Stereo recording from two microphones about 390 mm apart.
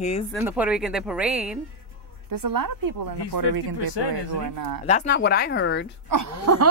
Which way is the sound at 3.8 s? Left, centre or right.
Left.